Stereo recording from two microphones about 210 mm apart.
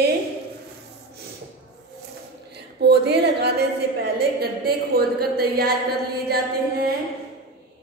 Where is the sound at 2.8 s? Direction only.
50° right (ahead or behind).